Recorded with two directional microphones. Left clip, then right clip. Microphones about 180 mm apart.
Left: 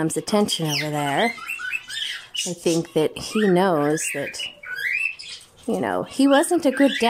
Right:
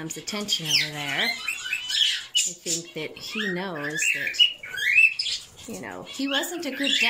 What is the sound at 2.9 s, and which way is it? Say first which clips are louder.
Speech: left 10 dB; 50° left (ahead or behind).